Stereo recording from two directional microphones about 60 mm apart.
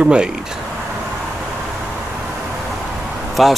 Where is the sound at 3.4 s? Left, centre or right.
Centre.